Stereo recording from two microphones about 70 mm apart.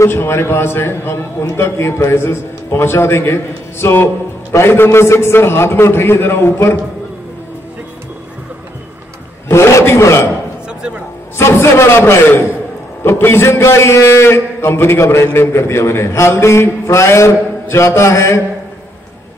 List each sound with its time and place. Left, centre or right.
0.1 s a man's voice: left
9.5 s a man's voice: left
11.3 s a man's voice: left